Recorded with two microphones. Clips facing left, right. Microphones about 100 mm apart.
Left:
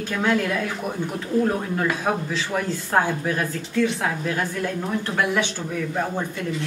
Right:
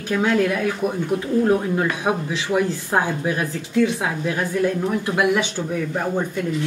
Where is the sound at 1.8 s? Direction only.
15° right (ahead or behind).